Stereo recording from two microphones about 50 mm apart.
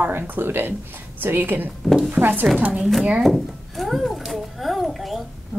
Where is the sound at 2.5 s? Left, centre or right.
Right.